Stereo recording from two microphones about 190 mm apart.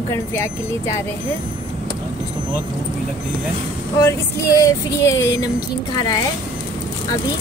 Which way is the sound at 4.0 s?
15° left (ahead or behind).